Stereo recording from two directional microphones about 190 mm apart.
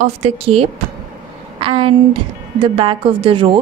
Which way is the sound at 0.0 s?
30° right (ahead or behind).